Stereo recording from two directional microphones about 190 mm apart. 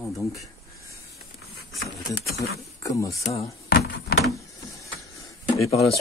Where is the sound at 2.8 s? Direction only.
15° left (ahead or behind).